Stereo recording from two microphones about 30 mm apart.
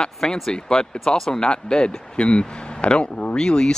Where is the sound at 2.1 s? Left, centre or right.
Left.